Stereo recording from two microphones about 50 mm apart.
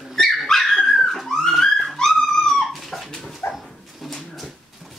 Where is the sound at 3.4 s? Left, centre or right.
Left.